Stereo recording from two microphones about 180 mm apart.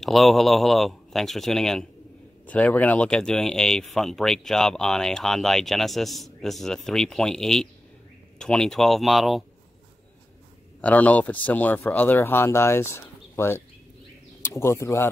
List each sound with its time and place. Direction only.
0.0 s speech: centre (ahead or behind)
10.8 s speech: 10° left (ahead or behind)